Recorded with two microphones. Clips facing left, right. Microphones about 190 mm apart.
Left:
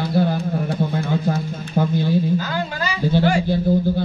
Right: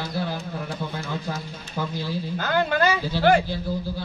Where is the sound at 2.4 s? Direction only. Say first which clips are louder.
Right 3 dB; 60° right (ahead or behind).